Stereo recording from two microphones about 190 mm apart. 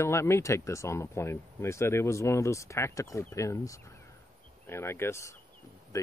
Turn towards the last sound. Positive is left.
turn(degrees=15)  # may be behind; listen again after turning